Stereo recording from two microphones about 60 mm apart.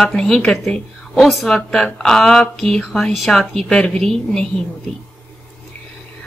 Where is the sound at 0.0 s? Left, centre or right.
Centre.